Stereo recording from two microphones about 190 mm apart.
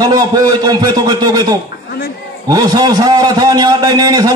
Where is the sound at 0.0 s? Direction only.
20° right (ahead or behind).